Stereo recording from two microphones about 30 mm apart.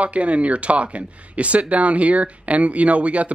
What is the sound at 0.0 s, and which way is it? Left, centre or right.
Speech, right.